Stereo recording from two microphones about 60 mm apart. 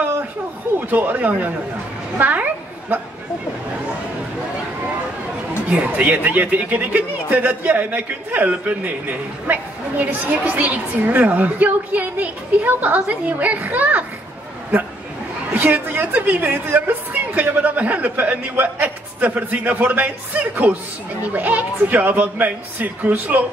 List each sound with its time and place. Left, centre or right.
0.7 s a man's voice: right
2.1 s a sound: right
5.9 s a man's voice: right
15.5 s a man's voice: right